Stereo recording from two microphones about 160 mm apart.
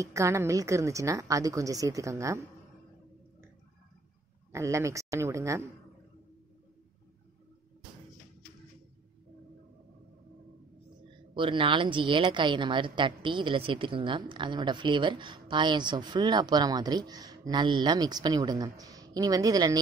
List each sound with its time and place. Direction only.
0.0 s a woman's voice: 20° right (ahead or behind)
4.5 s a woman's voice: 20° right (ahead or behind)
11.3 s a woman's voice: 30° right (ahead or behind)